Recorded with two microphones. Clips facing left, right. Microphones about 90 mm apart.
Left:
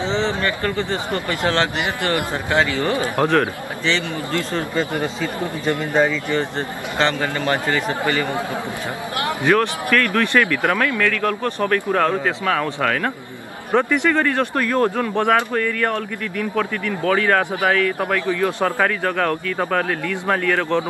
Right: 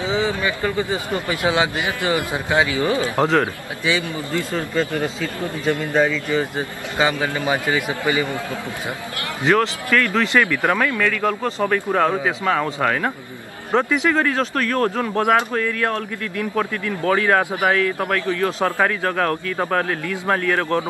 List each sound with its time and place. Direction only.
0.0 s speech: 10° right (ahead or behind)
4.7 s speech: 15° left (ahead or behind)
5.9 s a man's voice: centre (ahead or behind)
7.0 s speech: 10° right (ahead or behind)
9.4 s speech: 20° right (ahead or behind)
14.5 s speech: 15° left (ahead or behind)
15.0 s speech: 10° right (ahead or behind)
18.0 s speech: 15° left (ahead or behind)
18.6 s a man's voice: 5° right (ahead or behind)